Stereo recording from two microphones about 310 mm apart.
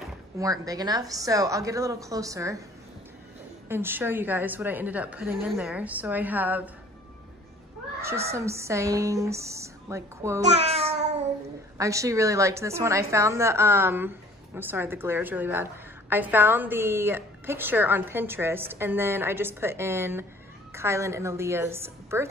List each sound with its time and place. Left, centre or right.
0.4 s a woman's voice: centre
3.6 s a woman's voice: centre
8.0 s a woman's voice: centre
10.4 s music: right
11.8 s a woman's voice: centre